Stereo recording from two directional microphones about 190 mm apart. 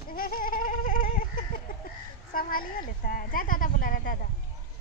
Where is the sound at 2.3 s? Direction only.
50° left (ahead or behind).